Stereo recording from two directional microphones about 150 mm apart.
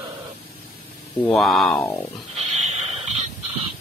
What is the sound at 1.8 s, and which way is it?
Speech, 15° left (ahead or behind).